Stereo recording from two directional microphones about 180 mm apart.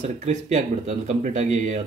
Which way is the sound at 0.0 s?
40° right (ahead or behind).